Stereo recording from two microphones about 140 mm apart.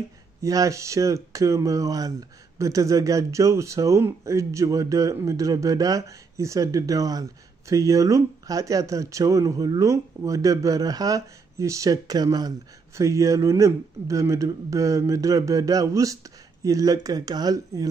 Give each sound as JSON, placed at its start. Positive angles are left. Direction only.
{"t": 0.4, "sound": "speech", "side_deg": -25}